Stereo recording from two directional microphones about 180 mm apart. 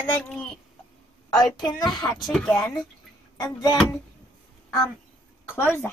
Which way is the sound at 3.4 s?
20° left (ahead or behind).